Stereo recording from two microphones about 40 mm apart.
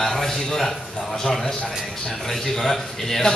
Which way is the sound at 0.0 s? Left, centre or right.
Centre.